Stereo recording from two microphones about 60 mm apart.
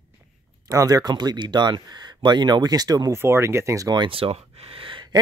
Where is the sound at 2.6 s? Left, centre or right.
Right.